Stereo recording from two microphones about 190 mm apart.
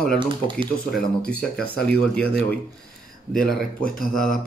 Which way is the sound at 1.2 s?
5° left (ahead or behind).